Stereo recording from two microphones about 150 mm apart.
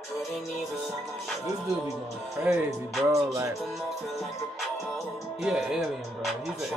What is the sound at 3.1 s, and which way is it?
Music, 20° right (ahead or behind).